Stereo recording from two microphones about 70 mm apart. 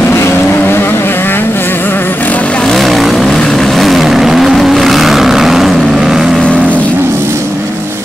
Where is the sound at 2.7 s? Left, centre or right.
Centre.